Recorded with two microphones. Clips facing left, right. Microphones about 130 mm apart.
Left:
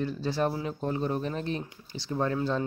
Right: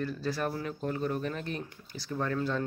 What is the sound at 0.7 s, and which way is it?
Speech, 30° left (ahead or behind).